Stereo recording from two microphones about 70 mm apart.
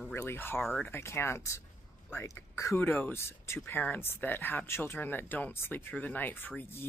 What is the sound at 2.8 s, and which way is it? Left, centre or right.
Speech, left.